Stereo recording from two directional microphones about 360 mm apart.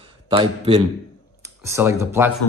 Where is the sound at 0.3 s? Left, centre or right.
Centre.